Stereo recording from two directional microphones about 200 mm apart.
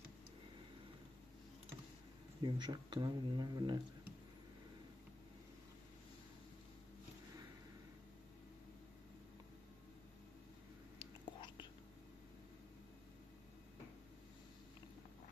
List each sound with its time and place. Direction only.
2.4 s speech: 20° right (ahead or behind)
11.0 s whispering: 25° left (ahead or behind)